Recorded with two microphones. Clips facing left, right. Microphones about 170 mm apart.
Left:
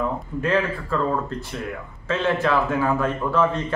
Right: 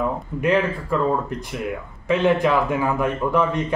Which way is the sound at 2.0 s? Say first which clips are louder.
Right 4 dB; 15° right (ahead or behind).